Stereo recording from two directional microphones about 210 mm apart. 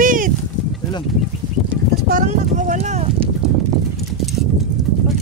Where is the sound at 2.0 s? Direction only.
40° right (ahead or behind).